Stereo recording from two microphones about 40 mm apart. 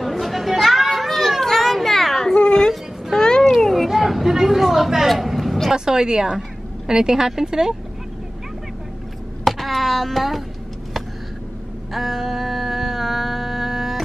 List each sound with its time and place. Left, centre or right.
0.0 s children playing: centre
2.3 s a sound: centre
3.6 s vehicle: centre
5.7 s speech: centre
9.4 s a sound: centre
11.9 s mantra: centre